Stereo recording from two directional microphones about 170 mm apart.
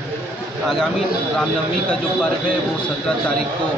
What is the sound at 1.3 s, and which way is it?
Speech, 5° left (ahead or behind).